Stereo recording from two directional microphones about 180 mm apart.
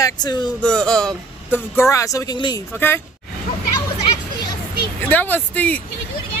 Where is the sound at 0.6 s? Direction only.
5° left (ahead or behind); by 2.6 s 20° left (ahead or behind).